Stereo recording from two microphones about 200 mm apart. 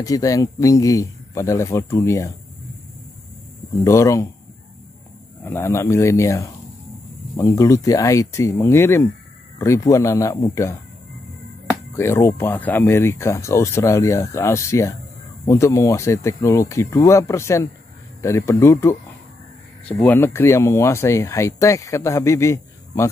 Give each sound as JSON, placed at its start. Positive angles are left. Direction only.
{"t": 0.0, "sound": "speech", "side_deg": 15}
{"t": 3.8, "sound": "speech", "side_deg": 15}
{"t": 5.4, "sound": "speech", "side_deg": 10}
{"t": 11.9, "sound": "speech", "side_deg": 15}